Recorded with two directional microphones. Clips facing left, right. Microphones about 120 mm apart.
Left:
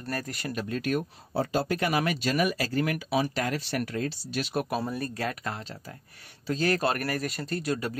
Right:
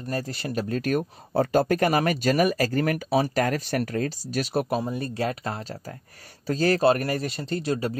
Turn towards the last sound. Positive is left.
turn(degrees=-30)  # may be behind; listen again after turning